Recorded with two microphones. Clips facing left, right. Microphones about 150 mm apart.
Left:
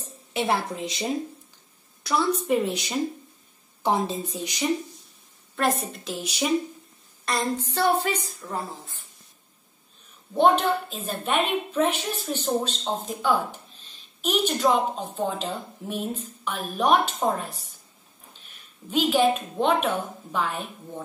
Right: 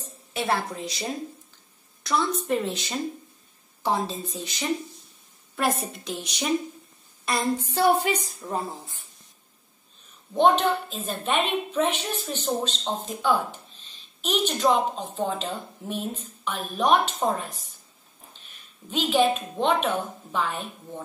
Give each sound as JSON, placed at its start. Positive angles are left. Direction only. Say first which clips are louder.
{"t": 0.0, "sound": "a woman's voice", "louder": "left 2 dB", "side_deg": 15}
{"t": 5.6, "sound": "a woman's voice", "louder": "left 1 dB", "side_deg": 0}
{"t": 7.3, "sound": "a sound", "louder": "even", "side_deg": -5}
{"t": 7.6, "sound": "speech", "louder": "right 2 dB", "side_deg": -10}
{"t": 10.3, "sound": "a woman's voice", "louder": "even", "side_deg": 10}
{"t": 18.9, "sound": "a woman's voice", "louder": "left 1 dB", "side_deg": 10}